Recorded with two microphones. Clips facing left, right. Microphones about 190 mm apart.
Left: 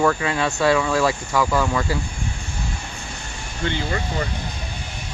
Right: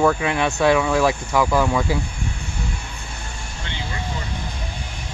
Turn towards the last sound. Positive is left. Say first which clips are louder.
# left 5 dB
turn(degrees=55)  # may be behind; listen again after turning